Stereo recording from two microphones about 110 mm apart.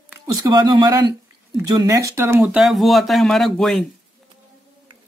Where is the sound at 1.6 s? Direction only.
30° right (ahead or behind).